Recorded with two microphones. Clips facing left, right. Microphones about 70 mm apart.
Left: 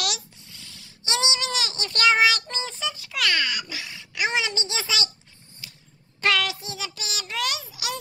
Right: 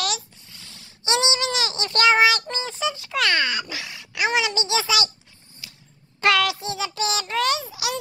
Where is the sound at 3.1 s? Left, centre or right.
Right.